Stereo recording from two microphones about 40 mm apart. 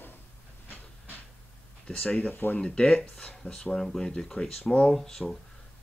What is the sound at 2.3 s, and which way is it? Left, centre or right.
Speech, left.